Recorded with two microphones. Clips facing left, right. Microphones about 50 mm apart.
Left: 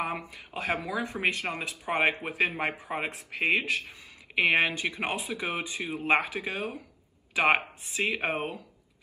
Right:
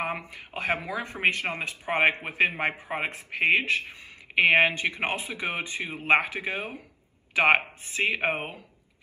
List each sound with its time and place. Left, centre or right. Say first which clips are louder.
0.0 s speech: right 1 dB; right